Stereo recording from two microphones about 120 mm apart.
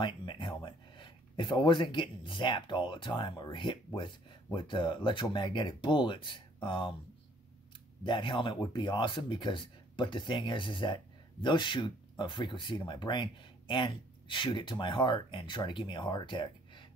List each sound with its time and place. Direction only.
0.0 s speech: 40° left (ahead or behind)
8.0 s speech: 45° left (ahead or behind)